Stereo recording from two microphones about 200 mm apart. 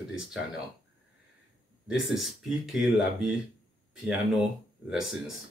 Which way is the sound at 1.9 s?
Centre (ahead or behind).